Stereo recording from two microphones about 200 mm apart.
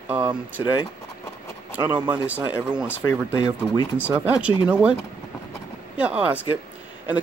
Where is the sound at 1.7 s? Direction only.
5° right (ahead or behind).